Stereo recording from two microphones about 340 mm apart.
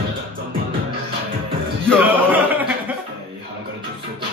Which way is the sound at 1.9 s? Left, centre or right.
Centre.